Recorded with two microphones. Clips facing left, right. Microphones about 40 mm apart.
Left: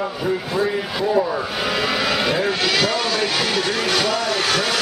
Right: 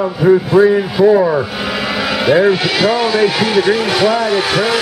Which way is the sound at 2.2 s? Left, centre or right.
Centre.